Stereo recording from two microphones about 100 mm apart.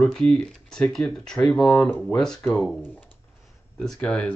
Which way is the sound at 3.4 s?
5° left (ahead or behind).